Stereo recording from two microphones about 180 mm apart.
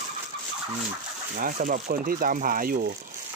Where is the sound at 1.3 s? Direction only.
50° right (ahead or behind).